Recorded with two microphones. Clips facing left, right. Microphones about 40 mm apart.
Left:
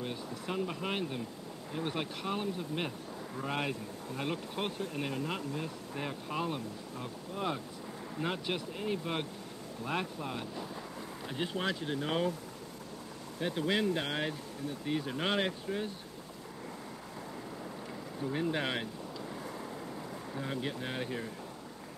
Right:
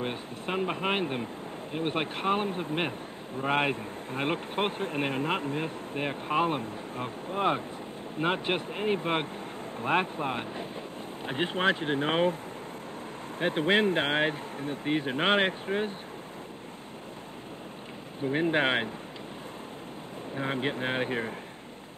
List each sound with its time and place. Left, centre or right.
0.0 s speech: right
13.4 s speech: right
18.2 s speech: right
20.3 s speech: right